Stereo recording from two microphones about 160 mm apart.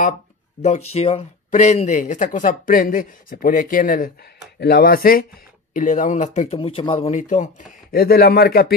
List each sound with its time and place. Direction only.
0.6 s speech: 45° left (ahead or behind); by 4.1 s 60° left (ahead or behind)
4.6 s speech: 80° left
5.7 s speech: 55° left (ahead or behind); by 7.1 s 35° left (ahead or behind)
7.1 s speech: 50° left (ahead or behind); by 8.7 s 70° left (ahead or behind)